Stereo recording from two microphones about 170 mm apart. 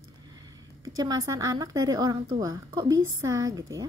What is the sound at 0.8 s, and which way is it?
A woman's voice, 20° right (ahead or behind).